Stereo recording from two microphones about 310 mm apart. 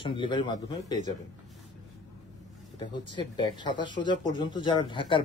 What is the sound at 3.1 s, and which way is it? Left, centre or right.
Speech, centre.